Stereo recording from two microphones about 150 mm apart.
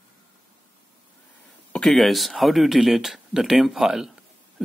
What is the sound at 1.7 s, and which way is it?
Speech, 5° left (ahead or behind).